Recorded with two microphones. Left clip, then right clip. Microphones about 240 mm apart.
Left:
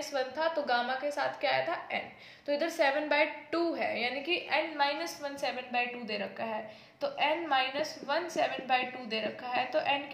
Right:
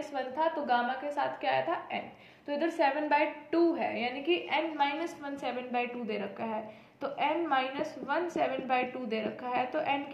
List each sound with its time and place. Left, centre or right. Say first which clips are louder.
0.1 s a woman's voice: even; left